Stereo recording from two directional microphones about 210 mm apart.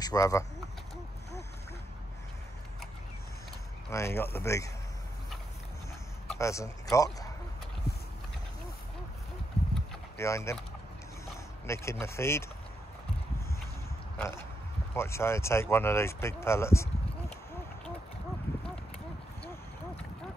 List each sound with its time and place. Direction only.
0.0 s speech: 15° left (ahead or behind)
3.9 s speech: 10° left (ahead or behind)
6.2 s speech: 15° left (ahead or behind)
7.9 s clip-clop: 50° left (ahead or behind)
10.1 s speech: 15° left (ahead or behind)
11.6 s speech: 15° left (ahead or behind)
14.1 s a sound: 10° left (ahead or behind)
15.0 s speech: 10° left (ahead or behind)